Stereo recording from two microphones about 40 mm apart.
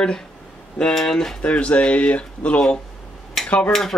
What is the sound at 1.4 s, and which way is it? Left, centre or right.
Speech, left.